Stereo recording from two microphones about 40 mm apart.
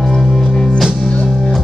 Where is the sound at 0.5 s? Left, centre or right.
Left.